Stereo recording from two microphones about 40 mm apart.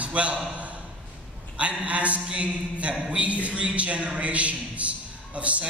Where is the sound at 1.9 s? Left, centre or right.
Right.